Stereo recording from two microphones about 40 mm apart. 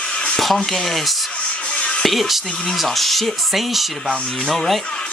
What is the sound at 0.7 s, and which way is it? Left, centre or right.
Speech, centre.